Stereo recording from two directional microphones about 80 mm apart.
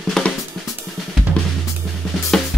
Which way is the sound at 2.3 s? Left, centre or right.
Centre.